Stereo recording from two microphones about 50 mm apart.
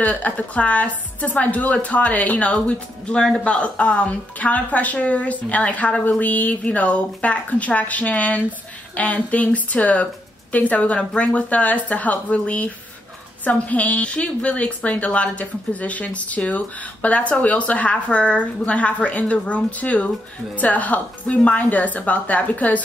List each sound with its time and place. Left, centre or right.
0.0 s a woman's voice: left